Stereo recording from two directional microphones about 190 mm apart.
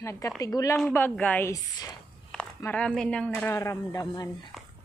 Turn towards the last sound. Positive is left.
turn(degrees=20)  # may be behind; listen again after turning